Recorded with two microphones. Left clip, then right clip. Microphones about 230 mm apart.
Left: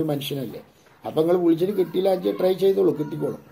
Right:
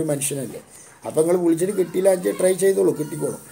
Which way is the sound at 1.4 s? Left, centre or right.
Right.